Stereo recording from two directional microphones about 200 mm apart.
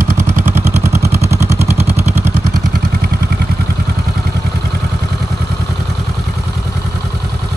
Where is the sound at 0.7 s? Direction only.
35° right (ahead or behind).